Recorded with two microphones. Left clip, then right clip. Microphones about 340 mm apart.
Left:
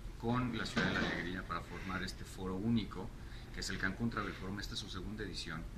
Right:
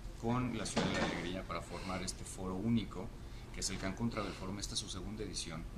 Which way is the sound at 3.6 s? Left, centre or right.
Centre.